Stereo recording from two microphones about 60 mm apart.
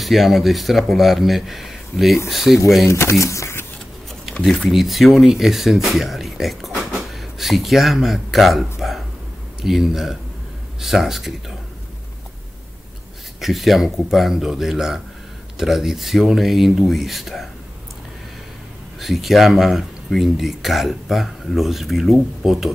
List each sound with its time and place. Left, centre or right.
0.0 s speech: centre
2.9 s speech: left
4.3 s speech: centre
13.4 s speech: centre
18.9 s speech: centre